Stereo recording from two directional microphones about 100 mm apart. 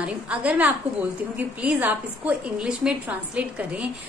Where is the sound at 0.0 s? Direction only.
15° right (ahead or behind).